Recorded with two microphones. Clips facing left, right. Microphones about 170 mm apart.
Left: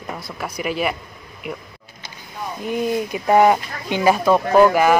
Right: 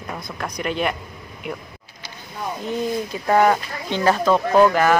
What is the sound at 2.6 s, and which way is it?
Speech, 15° left (ahead or behind).